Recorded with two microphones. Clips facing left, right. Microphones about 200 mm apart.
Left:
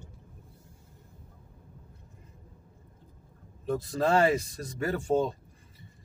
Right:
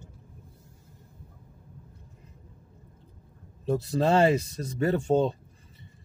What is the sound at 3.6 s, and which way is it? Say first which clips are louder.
A man's voice: right 3 dB; 25° right (ahead or behind).